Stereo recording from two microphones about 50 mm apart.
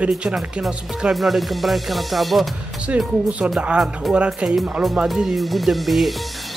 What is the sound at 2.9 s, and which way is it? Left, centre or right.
Speech, right.